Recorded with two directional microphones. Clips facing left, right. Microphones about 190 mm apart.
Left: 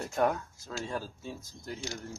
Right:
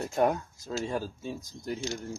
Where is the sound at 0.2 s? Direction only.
15° right (ahead or behind).